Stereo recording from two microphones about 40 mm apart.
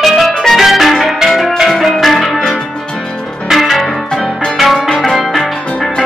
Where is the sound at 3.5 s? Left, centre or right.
Centre.